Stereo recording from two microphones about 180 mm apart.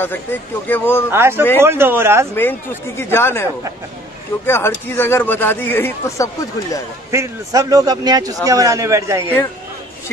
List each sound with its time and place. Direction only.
0.0 s speech: 10° left (ahead or behind)
1.1 s a man's voice: 15° right (ahead or behind)
2.3 s speech: 10° left (ahead or behind)
4.5 s speech: 15° left (ahead or behind)
7.1 s a man's voice: 15° right (ahead or behind)